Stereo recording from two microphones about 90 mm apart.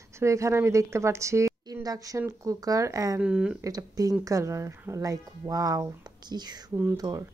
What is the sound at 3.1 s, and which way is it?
Speech, 10° right (ahead or behind).